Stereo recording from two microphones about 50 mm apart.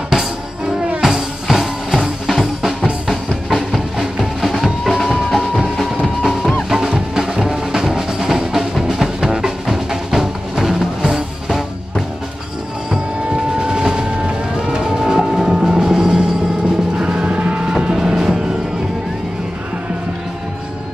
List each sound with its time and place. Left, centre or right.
0.1 s music: centre
6.7 s music: centre
12.9 s music: centre
17.7 s music: centre